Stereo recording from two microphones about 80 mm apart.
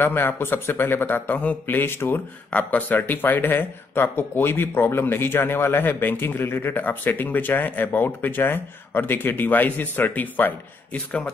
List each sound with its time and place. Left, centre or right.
0.0 s speech: left